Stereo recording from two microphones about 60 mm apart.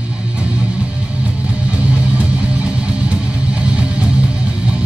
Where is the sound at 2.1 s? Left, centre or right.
Right.